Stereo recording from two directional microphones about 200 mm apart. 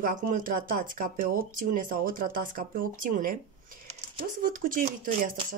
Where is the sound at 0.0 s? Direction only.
40° right (ahead or behind).